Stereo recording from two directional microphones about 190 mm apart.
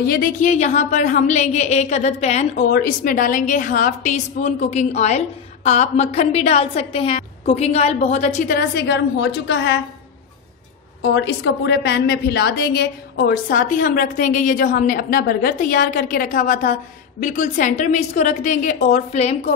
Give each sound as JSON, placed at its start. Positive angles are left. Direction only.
{"t": 0.0, "sound": "a woman's voice", "side_deg": 50}
{"t": 2.7, "sound": "a woman's voice", "side_deg": 45}
{"t": 8.5, "sound": "a woman's voice", "side_deg": 55}
{"t": 11.0, "sound": "a woman's voice", "side_deg": 70}